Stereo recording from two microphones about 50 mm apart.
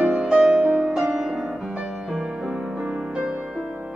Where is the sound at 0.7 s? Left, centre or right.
Right.